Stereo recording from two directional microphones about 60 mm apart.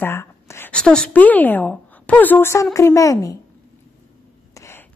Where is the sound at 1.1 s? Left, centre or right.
Left.